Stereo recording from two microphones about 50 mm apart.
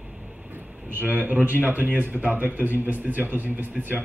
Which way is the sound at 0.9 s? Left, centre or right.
Right.